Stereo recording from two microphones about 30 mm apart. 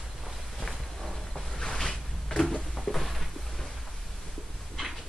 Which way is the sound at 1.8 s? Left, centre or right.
Centre.